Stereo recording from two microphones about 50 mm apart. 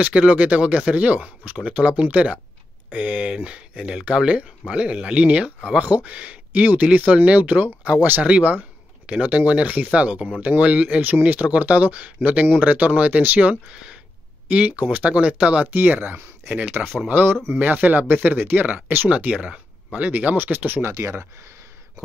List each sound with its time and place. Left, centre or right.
0.2 s speech: right
5.8 s speech: right
11.0 s speech: right
14.5 s speech: right
15.7 s speech: right
19.0 s speech: right
20.1 s speech: right
20.5 s speech: right
20.8 s speech: right